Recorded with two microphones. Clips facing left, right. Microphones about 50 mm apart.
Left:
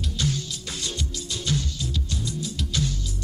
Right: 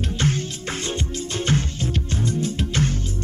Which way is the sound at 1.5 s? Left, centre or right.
Right.